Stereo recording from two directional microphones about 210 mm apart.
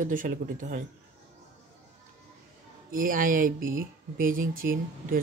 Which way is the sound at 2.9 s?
40° right (ahead or behind).